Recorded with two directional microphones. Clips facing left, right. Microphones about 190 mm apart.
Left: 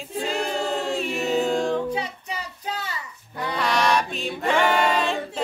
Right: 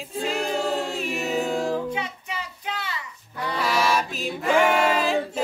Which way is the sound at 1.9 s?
35° left (ahead or behind).